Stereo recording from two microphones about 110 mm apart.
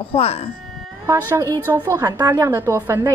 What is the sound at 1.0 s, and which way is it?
Speech, 25° right (ahead or behind).